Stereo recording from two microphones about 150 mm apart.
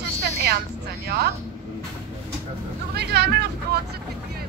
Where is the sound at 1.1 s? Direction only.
90° right.